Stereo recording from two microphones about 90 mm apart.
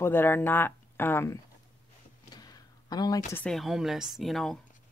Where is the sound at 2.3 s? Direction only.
50° left (ahead or behind).